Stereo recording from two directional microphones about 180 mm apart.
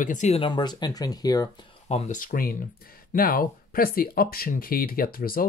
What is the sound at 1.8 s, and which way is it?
Speech, 40° left (ahead or behind).